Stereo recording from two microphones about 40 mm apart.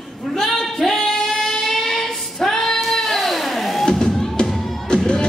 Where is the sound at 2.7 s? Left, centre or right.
Centre.